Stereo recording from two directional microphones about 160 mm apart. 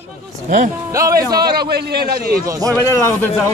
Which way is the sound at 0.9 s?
20° right (ahead or behind).